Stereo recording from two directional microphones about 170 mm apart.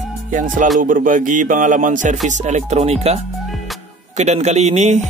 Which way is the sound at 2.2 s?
45° right (ahead or behind).